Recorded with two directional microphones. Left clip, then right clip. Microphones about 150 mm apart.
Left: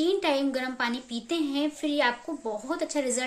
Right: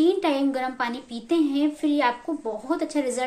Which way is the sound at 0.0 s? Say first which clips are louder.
Right 4 dB; 10° left (ahead or behind).